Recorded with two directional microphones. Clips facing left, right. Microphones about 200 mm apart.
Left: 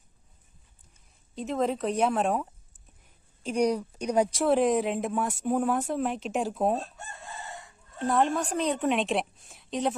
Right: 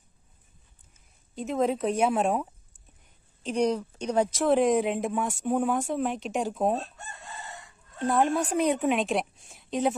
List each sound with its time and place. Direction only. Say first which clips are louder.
1.3 s speech: right 2 dB; centre (ahead or behind)
3.4 s speech: even; 10° left (ahead or behind)
4.5 s speech: right 3 dB; centre (ahead or behind)
8.0 s speech: right 1 dB; centre (ahead or behind)